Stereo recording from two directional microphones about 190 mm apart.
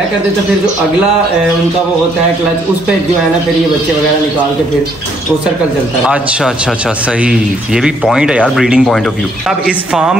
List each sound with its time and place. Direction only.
7.1 s speech: 5° right (ahead or behind)